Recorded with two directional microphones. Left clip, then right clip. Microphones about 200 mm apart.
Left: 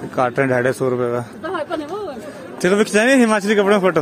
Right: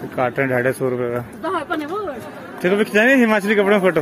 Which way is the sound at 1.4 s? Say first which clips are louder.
Right 1 dB; 60° right (ahead or behind).